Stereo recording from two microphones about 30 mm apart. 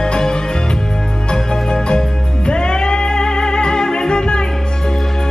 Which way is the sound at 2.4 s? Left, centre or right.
Left.